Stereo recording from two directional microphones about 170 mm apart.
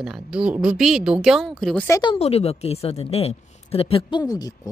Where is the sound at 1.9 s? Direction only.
25° left (ahead or behind).